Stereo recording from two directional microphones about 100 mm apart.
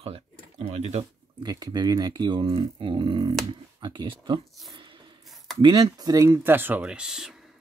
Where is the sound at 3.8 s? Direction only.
50° right (ahead or behind).